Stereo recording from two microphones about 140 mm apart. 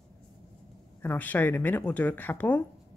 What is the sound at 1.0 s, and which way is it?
Speech, 15° left (ahead or behind).